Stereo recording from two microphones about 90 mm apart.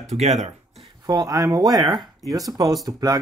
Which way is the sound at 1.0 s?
45° right (ahead or behind).